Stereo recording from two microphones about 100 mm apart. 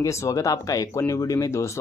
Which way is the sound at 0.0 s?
30° left (ahead or behind).